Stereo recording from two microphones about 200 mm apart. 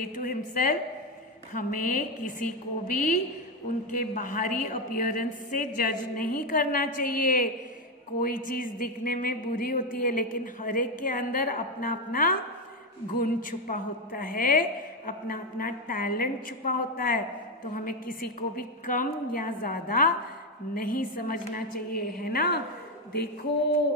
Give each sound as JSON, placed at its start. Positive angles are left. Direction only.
{"t": 0.1, "sound": "a woman's voice", "side_deg": 40}